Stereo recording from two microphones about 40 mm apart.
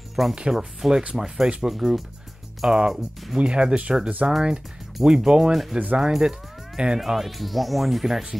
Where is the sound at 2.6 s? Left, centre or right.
Centre.